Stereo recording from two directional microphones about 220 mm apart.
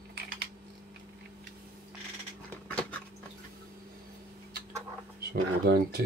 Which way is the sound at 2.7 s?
5° left (ahead or behind).